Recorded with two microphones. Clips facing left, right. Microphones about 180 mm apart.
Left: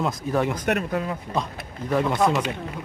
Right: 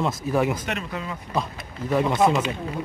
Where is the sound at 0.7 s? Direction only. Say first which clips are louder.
Left 6 dB; 55° left (ahead or behind).